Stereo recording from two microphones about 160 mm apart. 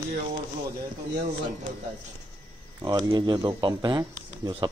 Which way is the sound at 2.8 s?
20° right (ahead or behind).